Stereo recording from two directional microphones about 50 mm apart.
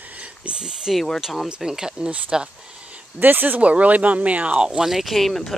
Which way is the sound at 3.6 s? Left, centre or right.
Right.